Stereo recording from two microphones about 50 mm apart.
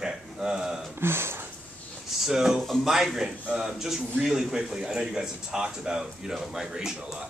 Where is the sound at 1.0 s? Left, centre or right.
Right.